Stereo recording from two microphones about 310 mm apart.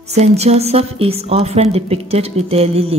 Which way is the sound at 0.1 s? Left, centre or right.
Right.